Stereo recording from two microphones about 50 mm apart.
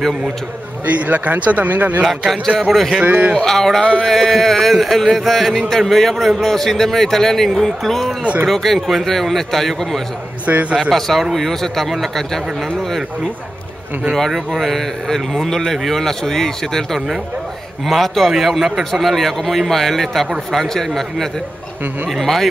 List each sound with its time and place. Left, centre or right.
0.8 s a man's voice: right
2.6 s speech: centre
3.0 s a man's voice: right
3.4 s a man's voice: centre
3.8 s speech: centre
4.1 s speech: centre
10.4 s a man's voice: right
10.8 s speech: centre
14.1 s a man's voice: centre